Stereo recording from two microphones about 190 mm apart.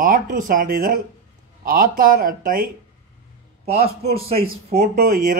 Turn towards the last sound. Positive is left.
turn(degrees=-50)  # may be behind; listen again after turning